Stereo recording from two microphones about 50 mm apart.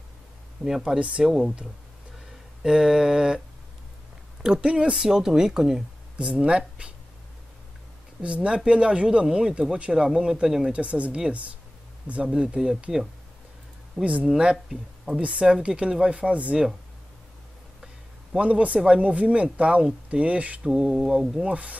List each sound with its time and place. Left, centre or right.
0.7 s speech: centre
0.9 s speech: right
1.2 s speech: centre
2.6 s speech: centre
4.4 s speech: centre
6.1 s speech: right
8.2 s speech: right
10.7 s speech: right
12.4 s speech: centre
14.0 s speech: right
18.4 s speech: right
20.6 s speech: centre
21.5 s speech: right